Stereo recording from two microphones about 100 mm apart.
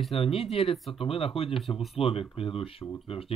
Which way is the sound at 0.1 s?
70° left (ahead or behind).